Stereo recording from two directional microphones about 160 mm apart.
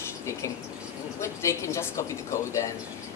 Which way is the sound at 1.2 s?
15° left (ahead or behind).